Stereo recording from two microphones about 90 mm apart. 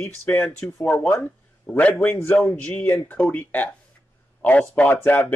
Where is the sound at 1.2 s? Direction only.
20° left (ahead or behind).